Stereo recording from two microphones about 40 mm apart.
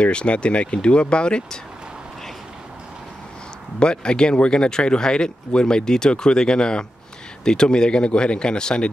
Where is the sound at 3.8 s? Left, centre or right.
Left.